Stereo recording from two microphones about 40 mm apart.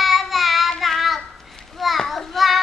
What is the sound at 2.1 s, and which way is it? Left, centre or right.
Child singing, centre.